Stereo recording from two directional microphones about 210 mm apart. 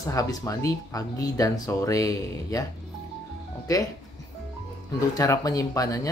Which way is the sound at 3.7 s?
15° left (ahead or behind).